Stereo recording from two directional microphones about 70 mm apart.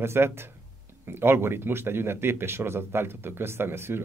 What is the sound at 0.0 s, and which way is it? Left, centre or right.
Speech, right.